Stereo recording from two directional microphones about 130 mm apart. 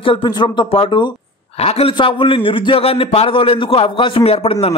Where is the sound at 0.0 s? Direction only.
40° left (ahead or behind).